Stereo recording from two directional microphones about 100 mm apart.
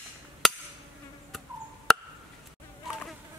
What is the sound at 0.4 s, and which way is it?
Insect, 5° left (ahead or behind).